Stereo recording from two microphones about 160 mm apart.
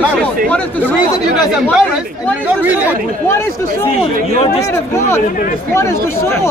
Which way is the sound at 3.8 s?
40° left (ahead or behind).